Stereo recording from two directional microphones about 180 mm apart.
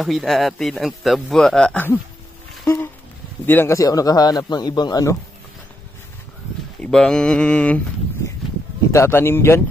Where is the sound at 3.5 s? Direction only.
15° left (ahead or behind).